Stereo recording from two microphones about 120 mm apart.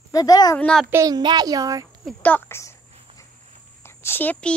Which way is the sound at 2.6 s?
25° left (ahead or behind).